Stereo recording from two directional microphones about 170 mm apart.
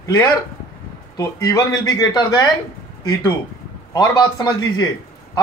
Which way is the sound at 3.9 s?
25° left (ahead or behind).